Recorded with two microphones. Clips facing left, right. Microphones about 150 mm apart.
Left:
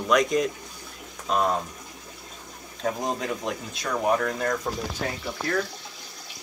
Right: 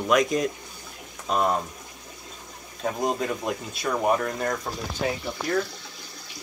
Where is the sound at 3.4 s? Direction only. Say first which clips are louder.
Right 2 dB; 5° right (ahead or behind).